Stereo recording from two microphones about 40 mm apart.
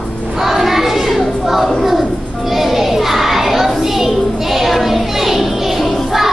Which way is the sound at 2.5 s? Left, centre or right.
Centre.